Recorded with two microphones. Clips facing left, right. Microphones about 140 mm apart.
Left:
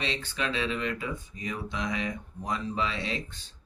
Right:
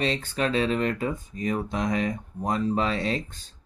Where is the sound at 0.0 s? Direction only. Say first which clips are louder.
Right 6 dB; 45° right (ahead or behind).